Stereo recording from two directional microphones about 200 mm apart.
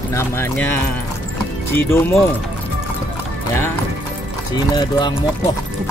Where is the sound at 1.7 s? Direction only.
10° left (ahead or behind).